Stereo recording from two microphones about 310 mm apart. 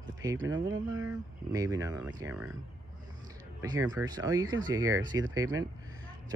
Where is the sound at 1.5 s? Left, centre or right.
Centre.